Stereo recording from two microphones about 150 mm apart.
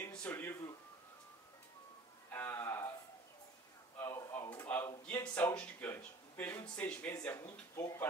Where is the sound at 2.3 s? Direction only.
15° left (ahead or behind).